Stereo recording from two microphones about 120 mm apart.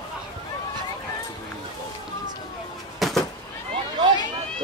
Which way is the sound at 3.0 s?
Centre (ahead or behind).